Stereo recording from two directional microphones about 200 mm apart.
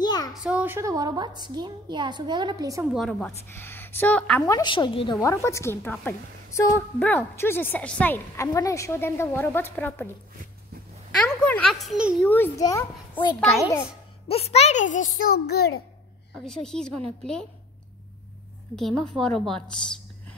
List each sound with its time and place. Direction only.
0.0 s a sound: 20° left (ahead or behind)
0.3 s a woman's voice: 5° right (ahead or behind)
2.9 s a woman's voice: centre (ahead or behind)
4.5 s a woman's voice: 20° left (ahead or behind)
11.1 s a child's voice: 5° left (ahead or behind)
12.3 s a woman's voice: 15° left (ahead or behind)
14.2 s a child's voice: 30° left (ahead or behind); by 15.8 s 50° left (ahead or behind)
16.3 s a child's voice: 5° left (ahead or behind)
18.8 s a child's voice: centre (ahead or behind)